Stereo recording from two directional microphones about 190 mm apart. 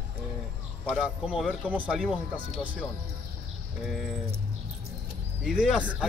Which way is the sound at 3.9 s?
Centre (ahead or behind).